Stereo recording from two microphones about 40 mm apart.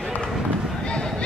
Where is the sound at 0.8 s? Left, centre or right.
Left.